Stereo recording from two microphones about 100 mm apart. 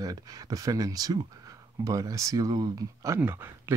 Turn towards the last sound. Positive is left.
turn(degrees=-25)  # may be behind; listen again after turning